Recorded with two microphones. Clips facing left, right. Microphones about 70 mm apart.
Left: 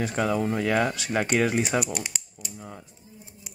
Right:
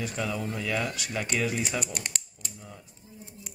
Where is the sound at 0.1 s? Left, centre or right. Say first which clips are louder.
Left 7 dB; left.